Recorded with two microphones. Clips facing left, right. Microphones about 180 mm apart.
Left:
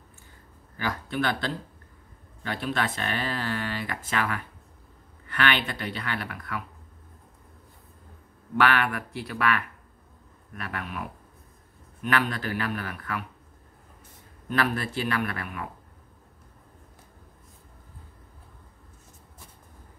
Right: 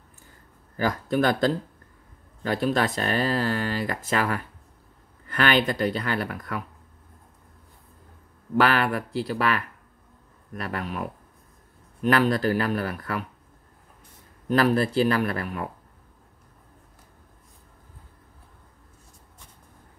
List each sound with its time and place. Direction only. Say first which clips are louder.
0.7 s speech: right 6 dB; 40° right (ahead or behind)
8.5 s speech: right 3 dB; 35° right (ahead or behind)
14.5 s speech: right 7 dB; 35° right (ahead or behind)